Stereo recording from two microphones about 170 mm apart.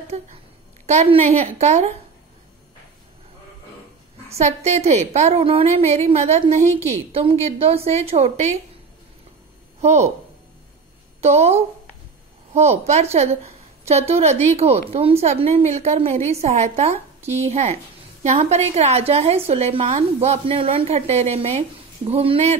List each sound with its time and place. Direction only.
0.1 s a woman's voice: 40° right (ahead or behind)
4.3 s a woman's voice: 40° right (ahead or behind)
9.8 s speech: 40° right (ahead or behind)
11.1 s a woman's voice: 40° right (ahead or behind)